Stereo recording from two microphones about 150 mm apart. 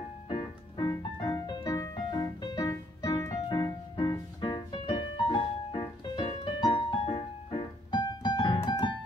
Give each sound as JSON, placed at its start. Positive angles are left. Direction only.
{"t": 0.3, "sound": "music", "side_deg": 30}